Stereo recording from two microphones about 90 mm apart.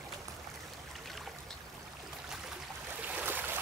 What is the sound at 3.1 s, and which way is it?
Boat, 20° right (ahead or behind).